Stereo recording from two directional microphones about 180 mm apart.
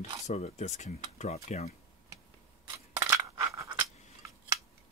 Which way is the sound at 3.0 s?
15° right (ahead or behind).